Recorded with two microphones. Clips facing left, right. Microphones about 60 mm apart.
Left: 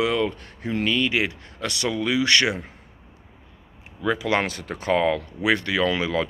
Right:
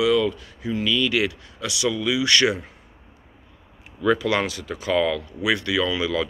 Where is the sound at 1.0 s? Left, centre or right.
Left.